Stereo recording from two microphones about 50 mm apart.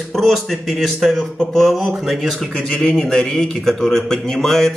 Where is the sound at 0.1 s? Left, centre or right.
Centre.